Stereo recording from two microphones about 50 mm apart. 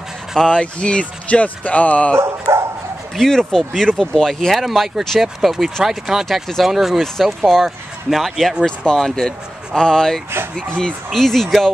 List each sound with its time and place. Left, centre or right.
0.4 s speech: left
2.1 s speech: right
3.2 s speech: centre
7.0 s speech: centre
11.1 s speech: centre